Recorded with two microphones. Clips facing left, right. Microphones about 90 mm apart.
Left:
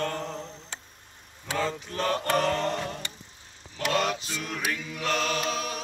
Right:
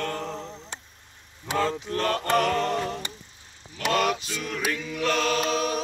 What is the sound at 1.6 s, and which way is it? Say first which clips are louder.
Mantra: right 3 dB; centre (ahead or behind).